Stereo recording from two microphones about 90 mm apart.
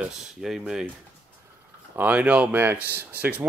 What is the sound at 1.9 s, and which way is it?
Speech, 20° right (ahead or behind).